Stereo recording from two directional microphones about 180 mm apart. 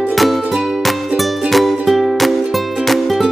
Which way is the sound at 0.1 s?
Centre (ahead or behind).